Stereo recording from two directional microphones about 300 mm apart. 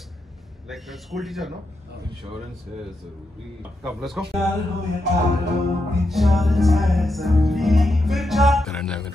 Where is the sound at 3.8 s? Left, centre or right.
Centre.